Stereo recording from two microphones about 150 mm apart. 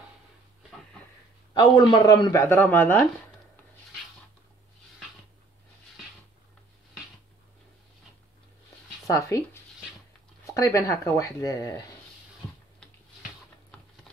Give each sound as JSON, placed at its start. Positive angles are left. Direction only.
{"t": 1.5, "sound": "speech", "side_deg": 30}
{"t": 9.0, "sound": "speech", "side_deg": 20}